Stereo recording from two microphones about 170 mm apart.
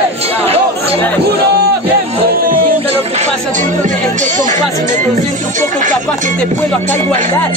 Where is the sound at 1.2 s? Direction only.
70° right (ahead or behind).